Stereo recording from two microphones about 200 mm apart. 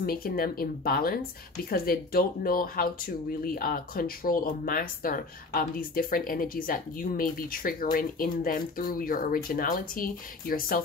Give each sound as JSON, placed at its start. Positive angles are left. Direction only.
{"t": 0.0, "sound": "a woman's voice", "side_deg": 50}